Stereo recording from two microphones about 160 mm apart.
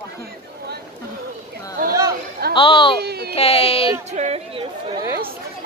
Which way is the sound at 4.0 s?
45° right (ahead or behind).